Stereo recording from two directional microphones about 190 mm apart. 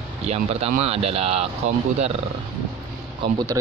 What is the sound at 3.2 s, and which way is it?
Speech, 20° right (ahead or behind).